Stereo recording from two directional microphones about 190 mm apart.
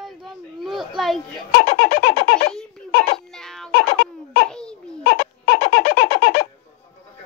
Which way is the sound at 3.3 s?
Centre (ahead or behind).